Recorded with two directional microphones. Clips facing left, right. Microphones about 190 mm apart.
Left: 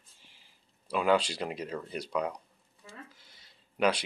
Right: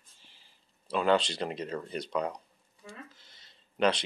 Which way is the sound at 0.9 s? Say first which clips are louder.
Even; 10° left (ahead or behind).